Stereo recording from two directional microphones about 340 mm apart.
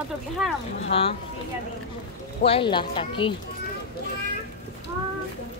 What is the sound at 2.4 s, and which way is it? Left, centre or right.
Speech, centre.